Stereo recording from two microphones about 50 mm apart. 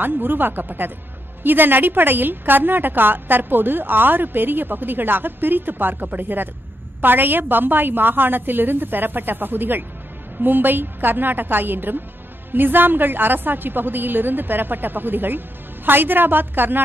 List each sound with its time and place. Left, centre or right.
0.0 s a woman's voice: right